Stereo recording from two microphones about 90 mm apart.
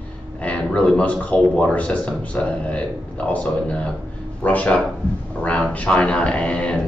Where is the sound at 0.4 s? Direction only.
15° left (ahead or behind).